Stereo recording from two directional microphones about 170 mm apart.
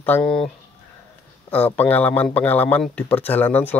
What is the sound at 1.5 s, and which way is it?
Speech, 10° left (ahead or behind).